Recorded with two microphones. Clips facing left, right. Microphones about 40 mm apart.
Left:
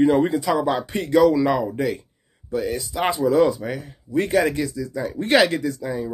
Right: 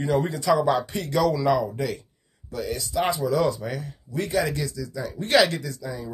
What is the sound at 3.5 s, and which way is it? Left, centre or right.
Speech, centre.